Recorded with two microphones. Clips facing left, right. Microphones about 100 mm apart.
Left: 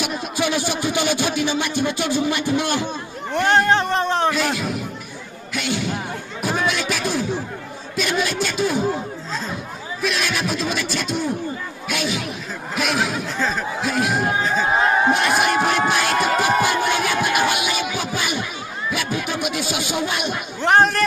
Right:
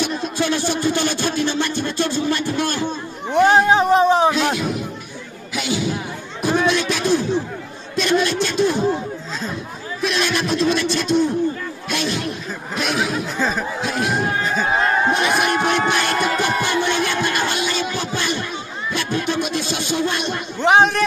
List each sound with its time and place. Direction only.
0.0 s speech: 10° left (ahead or behind)
3.3 s a man's voice: 5° right (ahead or behind)
10.0 s speech: centre (ahead or behind)
14.8 s a sound: 10° left (ahead or behind)
15.1 s music: centre (ahead or behind)
18.9 s speech: 5° left (ahead or behind)